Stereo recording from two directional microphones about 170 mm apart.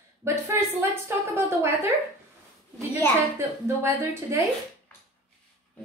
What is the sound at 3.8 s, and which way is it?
Speech, 15° right (ahead or behind).